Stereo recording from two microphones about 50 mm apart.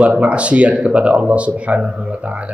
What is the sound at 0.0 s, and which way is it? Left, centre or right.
A man's voice, right.